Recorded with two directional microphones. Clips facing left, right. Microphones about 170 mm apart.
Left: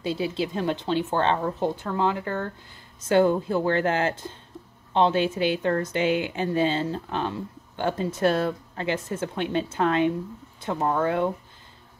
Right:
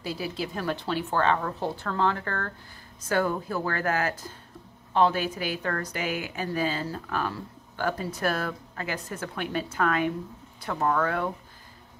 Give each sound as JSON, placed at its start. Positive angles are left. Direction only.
{"t": 0.0, "sound": "a woman's voice", "side_deg": 25}